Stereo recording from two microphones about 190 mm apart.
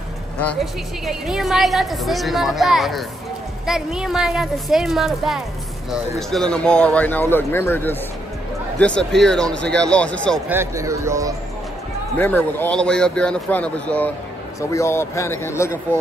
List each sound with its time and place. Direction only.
0.5 s a woman's voice: centre (ahead or behind)
10.5 s speech: 15° right (ahead or behind)
12.2 s speech: 10° left (ahead or behind)